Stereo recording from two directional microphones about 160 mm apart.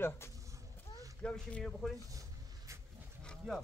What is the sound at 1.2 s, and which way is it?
Speech, 5° left (ahead or behind).